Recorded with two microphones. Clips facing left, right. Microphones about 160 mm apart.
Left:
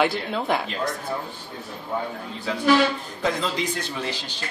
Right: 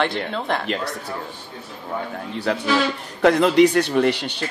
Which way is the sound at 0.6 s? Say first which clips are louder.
Right 2 dB; 70° right (ahead or behind).